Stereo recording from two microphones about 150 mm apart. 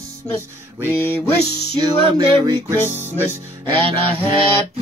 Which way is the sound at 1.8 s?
30° right (ahead or behind).